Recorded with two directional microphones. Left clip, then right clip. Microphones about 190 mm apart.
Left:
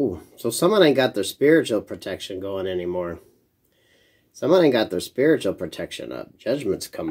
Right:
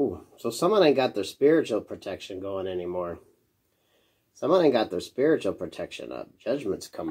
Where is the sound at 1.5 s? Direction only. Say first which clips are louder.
Left 5 dB; 45° left (ahead or behind).